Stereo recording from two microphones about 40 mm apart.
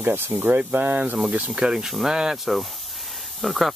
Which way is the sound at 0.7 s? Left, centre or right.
Right.